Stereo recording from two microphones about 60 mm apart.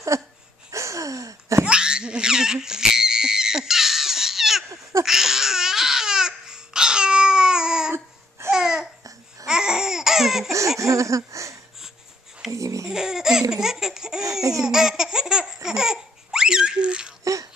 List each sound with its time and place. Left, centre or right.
0.1 s a sound: right
1.6 s laughter: centre
5.0 s babbling: centre
9.5 s laughter: centre
10.8 s laughter: right
12.4 s babbling: right
12.9 s laughter: centre
17.2 s a sound: right